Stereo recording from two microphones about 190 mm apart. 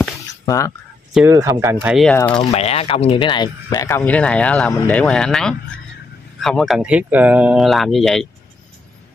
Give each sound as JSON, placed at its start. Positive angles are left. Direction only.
{"t": 0.5, "sound": "speech", "side_deg": 15}
{"t": 1.2, "sound": "speech", "side_deg": -15}
{"t": 2.3, "sound": "speech", "side_deg": 35}
{"t": 3.9, "sound": "speech", "side_deg": 5}